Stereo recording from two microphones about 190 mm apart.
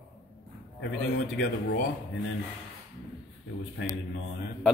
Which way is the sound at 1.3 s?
65° left (ahead or behind).